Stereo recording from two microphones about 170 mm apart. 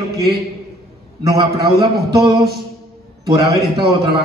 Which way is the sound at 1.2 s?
25° right (ahead or behind).